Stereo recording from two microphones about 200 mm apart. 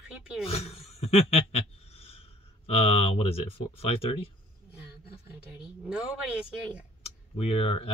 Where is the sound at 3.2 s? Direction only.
30° left (ahead or behind).